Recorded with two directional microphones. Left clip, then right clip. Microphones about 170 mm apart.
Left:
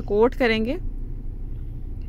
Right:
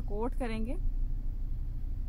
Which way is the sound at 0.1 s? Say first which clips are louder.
Left 18 dB; 20° left (ahead or behind).